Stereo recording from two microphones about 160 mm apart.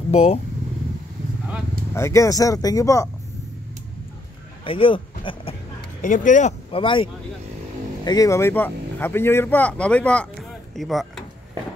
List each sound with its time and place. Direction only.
0.1 s speech: 40° left (ahead or behind)
2.0 s speech: 20° left (ahead or behind)
4.6 s speech: 35° left (ahead or behind)
6.0 s speech: 55° left (ahead or behind)
6.7 s speech: 35° left (ahead or behind); by 10.2 s 5° left (ahead or behind)
10.7 s a sound: centre (ahead or behind)